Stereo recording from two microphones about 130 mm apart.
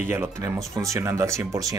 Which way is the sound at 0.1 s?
20° right (ahead or behind).